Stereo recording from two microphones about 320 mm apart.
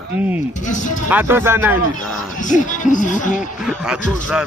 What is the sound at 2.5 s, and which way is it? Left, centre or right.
Speech, left.